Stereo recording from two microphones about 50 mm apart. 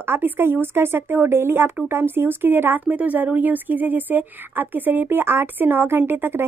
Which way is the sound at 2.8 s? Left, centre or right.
Right.